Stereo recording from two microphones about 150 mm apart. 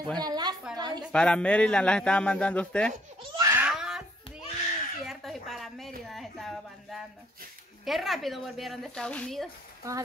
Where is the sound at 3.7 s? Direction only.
5° right (ahead or behind).